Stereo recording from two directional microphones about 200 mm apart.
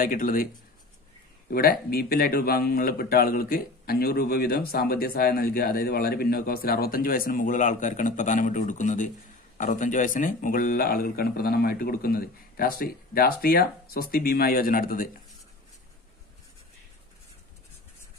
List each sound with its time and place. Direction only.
0.0 s speech: 45° left (ahead or behind)
1.5 s speech: 50° left (ahead or behind)